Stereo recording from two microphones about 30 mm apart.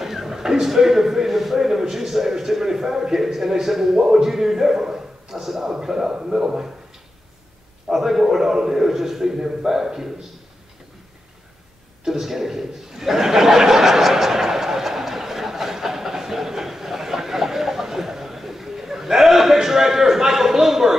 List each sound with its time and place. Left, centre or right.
0.0 s a man's voice: centre
7.9 s a man's voice: centre
12.0 s chuckle: centre